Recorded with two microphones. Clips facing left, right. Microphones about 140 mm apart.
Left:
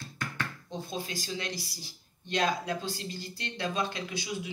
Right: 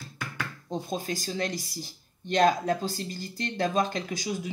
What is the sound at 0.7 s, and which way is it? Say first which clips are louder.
Speech: right 10 dB; 45° right (ahead or behind).